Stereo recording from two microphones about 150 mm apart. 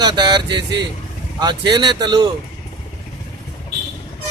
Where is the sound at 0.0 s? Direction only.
30° right (ahead or behind).